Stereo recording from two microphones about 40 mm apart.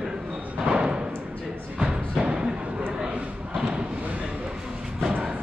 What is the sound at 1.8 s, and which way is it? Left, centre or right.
Music, right.